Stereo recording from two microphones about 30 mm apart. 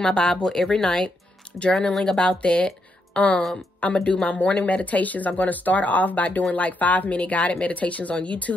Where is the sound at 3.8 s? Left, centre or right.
Left.